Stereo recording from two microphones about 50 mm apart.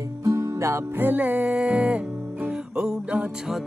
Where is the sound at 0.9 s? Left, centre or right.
Right.